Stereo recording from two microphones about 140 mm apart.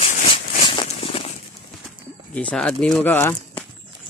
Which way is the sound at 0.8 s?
45° left (ahead or behind).